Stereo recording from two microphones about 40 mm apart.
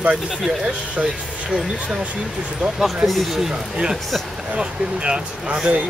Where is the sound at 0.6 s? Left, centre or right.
Right.